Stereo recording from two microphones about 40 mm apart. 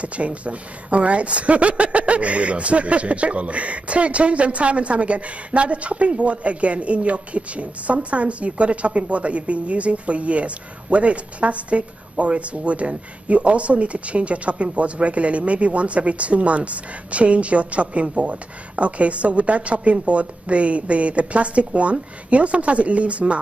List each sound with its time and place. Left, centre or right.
0.0 s speech: right